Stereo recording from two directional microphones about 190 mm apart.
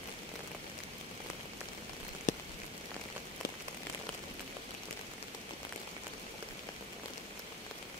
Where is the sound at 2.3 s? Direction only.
40° left (ahead or behind).